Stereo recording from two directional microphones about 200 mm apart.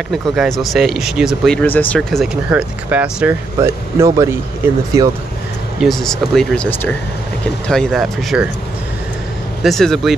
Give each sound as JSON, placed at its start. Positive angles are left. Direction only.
{"t": 0.1, "sound": "speech", "side_deg": 0}
{"t": 5.8, "sound": "speech", "side_deg": 0}
{"t": 9.6, "sound": "speech", "side_deg": 0}